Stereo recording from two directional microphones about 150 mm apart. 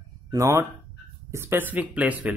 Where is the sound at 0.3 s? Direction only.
20° right (ahead or behind).